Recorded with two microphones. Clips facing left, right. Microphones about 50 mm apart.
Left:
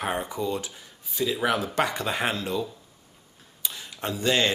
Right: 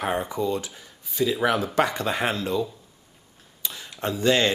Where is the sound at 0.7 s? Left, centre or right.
Centre.